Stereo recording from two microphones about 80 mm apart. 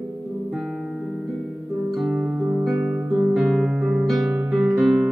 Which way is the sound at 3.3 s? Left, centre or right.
Centre.